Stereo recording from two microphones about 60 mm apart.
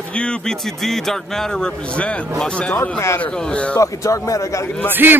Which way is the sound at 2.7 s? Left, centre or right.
Left.